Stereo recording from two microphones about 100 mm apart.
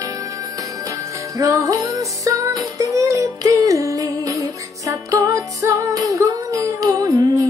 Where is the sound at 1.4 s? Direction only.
35° right (ahead or behind).